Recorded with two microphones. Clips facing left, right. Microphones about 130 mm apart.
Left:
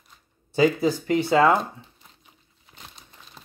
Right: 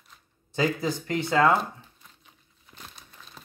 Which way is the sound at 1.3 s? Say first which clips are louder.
Left 3 dB; 20° left (ahead or behind).